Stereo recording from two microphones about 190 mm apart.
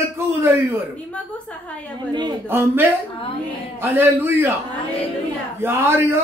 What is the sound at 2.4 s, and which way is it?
A man's voice, 10° right (ahead or behind).